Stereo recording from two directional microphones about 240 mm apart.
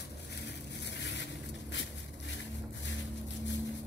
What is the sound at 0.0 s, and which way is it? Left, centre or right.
Vehicle, left.